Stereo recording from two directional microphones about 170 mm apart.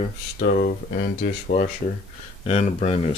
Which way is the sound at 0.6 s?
75° left (ahead or behind).